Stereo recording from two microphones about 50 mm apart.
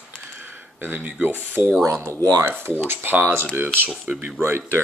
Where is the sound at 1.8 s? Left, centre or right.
Right.